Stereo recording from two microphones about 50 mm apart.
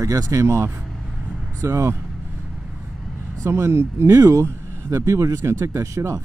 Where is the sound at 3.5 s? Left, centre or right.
Right.